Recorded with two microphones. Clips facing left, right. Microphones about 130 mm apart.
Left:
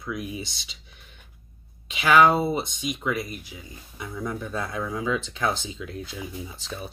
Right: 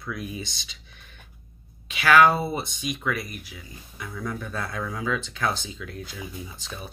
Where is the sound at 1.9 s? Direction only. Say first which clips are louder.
Even; 20° left (ahead or behind).